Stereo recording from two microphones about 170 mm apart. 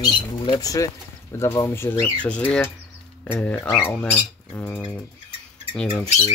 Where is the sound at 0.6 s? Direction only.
20° left (ahead or behind).